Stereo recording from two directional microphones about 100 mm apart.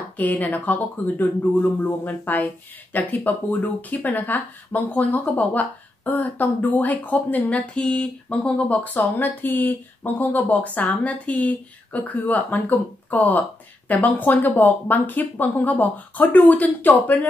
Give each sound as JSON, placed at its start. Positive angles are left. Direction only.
{"t": 0.2, "sound": "speech", "side_deg": 15}